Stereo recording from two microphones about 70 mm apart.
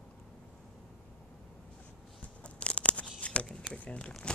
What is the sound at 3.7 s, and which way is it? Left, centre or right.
Speech, centre.